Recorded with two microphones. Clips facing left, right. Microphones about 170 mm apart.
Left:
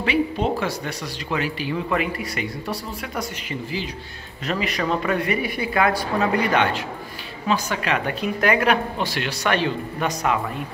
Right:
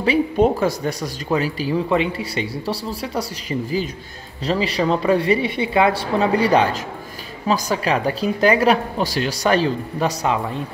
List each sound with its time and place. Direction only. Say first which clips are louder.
0.0 s speech: right 5 dB; 40° right (ahead or behind)